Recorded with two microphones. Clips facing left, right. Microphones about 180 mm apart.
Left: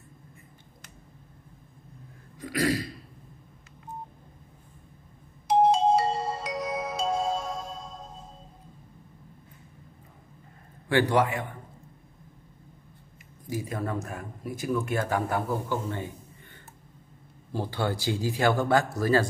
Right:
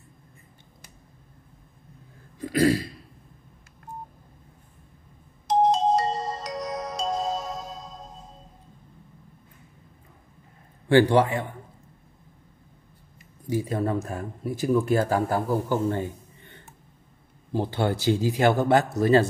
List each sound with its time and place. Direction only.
2.3 s throat clearing: 30° right (ahead or behind)
5.5 s music: centre (ahead or behind)
10.9 s speech: 30° right (ahead or behind)
13.5 s speech: 30° right (ahead or behind)
17.5 s a man's voice: 20° right (ahead or behind)